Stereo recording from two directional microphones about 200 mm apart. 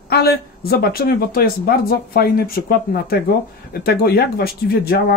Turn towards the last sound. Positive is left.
turn(degrees=50)  # may be behind; listen again after turning